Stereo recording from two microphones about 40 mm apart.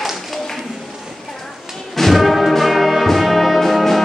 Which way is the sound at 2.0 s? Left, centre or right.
Centre.